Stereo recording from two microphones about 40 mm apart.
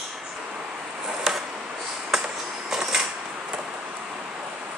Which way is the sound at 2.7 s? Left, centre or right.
Centre.